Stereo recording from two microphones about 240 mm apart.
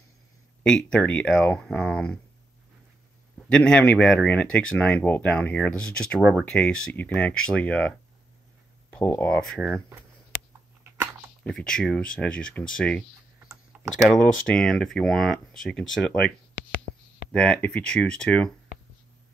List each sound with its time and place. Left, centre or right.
0.7 s speech: centre
3.4 s speech: centre
8.9 s speech: centre
11.4 s speech: centre
14.0 s speech: centre